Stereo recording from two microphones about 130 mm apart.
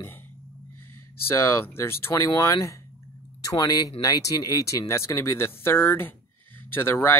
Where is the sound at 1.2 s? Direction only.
20° left (ahead or behind).